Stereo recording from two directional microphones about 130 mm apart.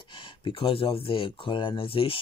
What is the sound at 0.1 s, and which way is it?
Speech, 40° left (ahead or behind).